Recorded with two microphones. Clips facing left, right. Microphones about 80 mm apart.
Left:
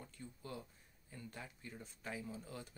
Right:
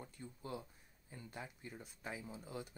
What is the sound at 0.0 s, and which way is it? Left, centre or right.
Speech, right.